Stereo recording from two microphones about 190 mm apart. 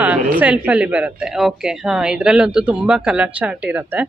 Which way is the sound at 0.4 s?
10° right (ahead or behind).